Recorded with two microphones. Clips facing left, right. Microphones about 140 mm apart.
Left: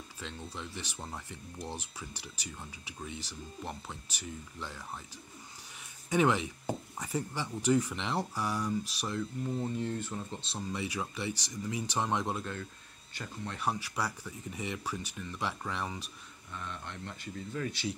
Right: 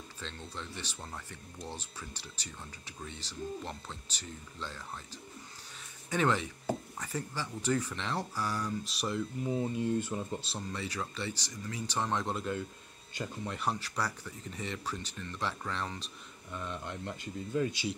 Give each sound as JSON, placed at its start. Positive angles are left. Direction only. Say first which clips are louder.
{"t": 0.2, "sound": "speech", "louder": "left 1 dB", "side_deg": 10}
{"t": 8.8, "sound": "speech", "louder": "right 1 dB", "side_deg": 0}
{"t": 10.7, "sound": "speech", "louder": "left 3 dB", "side_deg": 15}
{"t": 13.5, "sound": "speech", "louder": "left 2 dB", "side_deg": 5}
{"t": 16.5, "sound": "speech", "louder": "right 3 dB", "side_deg": -15}